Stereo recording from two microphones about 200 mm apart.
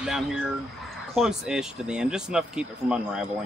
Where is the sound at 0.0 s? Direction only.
Centre (ahead or behind).